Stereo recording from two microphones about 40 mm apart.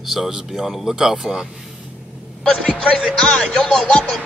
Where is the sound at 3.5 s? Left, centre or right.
Left.